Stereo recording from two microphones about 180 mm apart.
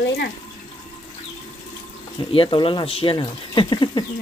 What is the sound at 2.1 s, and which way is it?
Speech, 30° left (ahead or behind).